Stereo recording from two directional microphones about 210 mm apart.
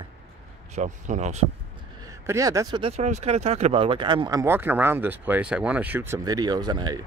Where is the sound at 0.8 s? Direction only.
35° right (ahead or behind).